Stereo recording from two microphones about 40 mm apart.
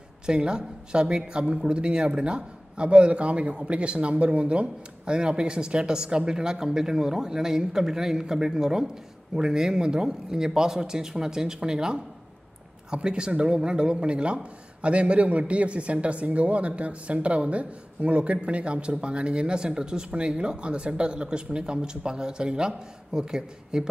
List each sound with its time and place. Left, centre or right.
0.3 s speech: right